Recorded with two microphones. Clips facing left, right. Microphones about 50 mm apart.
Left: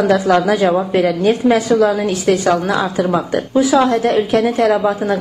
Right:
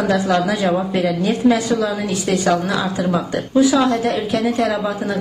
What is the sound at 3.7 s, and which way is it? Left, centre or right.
Speech, left.